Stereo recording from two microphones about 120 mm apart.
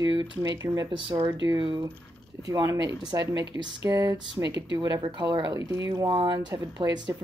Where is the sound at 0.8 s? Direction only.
45° right (ahead or behind); by 6.0 s 25° right (ahead or behind).